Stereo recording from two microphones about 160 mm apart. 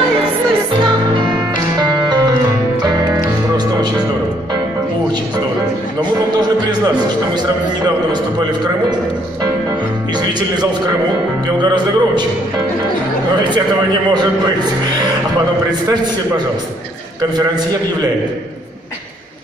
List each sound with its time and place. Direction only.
1.8 s music: 25° right (ahead or behind)
7.3 s speech: 25° right (ahead or behind)
10.5 s speech: 25° right (ahead or behind)
14.1 s speech: 25° right (ahead or behind)